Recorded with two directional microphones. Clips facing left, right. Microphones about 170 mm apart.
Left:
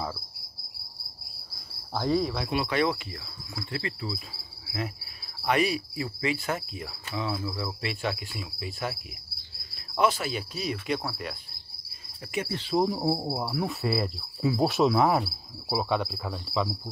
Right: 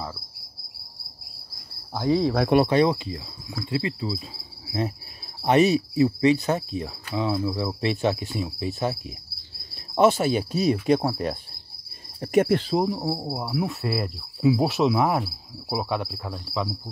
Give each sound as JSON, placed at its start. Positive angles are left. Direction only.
{"t": 2.3, "sound": "speech", "side_deg": -55}
{"t": 2.8, "sound": "insect", "side_deg": -25}
{"t": 8.3, "sound": "cricket", "side_deg": -40}
{"t": 10.0, "sound": "insect", "side_deg": -25}
{"t": 10.5, "sound": "cricket", "side_deg": -40}
{"t": 12.8, "sound": "cricket", "side_deg": 5}